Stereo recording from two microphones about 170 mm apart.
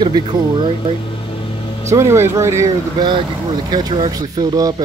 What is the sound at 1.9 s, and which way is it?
Speech, 15° right (ahead or behind).